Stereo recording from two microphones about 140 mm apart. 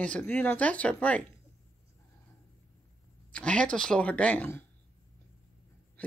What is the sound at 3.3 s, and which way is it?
Speech, 5° left (ahead or behind).